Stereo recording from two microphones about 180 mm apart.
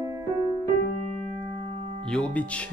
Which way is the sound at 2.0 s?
5° left (ahead or behind).